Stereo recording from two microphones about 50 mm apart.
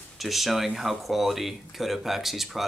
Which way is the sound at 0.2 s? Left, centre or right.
Centre.